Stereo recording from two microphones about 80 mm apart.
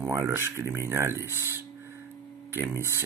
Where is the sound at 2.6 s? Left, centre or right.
Right.